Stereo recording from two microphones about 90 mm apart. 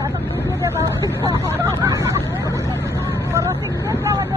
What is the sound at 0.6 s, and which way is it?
Vehicle, 35° right (ahead or behind).